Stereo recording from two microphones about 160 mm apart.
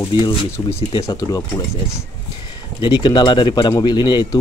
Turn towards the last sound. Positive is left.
turn(degrees=25)  # may be behind; listen again after turning